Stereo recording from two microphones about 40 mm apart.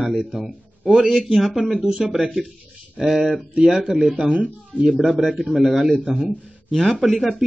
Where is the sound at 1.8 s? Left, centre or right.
Right.